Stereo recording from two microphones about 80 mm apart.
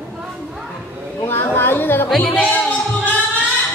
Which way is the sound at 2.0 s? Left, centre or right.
Centre.